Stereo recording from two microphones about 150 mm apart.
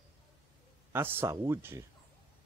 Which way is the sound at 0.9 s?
15° right (ahead or behind).